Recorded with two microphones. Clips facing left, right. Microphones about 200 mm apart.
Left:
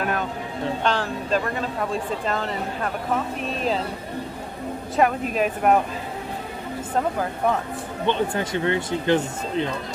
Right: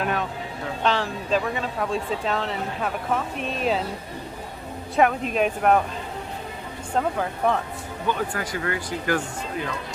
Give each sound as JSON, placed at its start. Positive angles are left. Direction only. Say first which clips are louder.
{"t": 0.0, "sound": "music", "louder": "even", "side_deg": 0}
{"t": 0.8, "sound": "speech", "louder": "right 3 dB", "side_deg": 0}
{"t": 5.0, "sound": "speech", "louder": "even", "side_deg": 0}
{"t": 7.0, "sound": "speech", "louder": "even", "side_deg": 5}
{"t": 8.1, "sound": "speech", "louder": "left 4 dB", "side_deg": 25}